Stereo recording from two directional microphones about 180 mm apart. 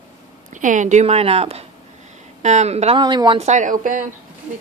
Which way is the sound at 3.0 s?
25° right (ahead or behind).